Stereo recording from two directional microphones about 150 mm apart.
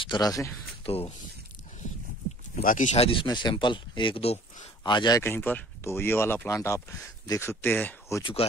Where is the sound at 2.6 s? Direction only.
60° left (ahead or behind).